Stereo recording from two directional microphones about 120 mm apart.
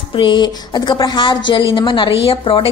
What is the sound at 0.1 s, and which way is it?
A woman's voice, 40° left (ahead or behind).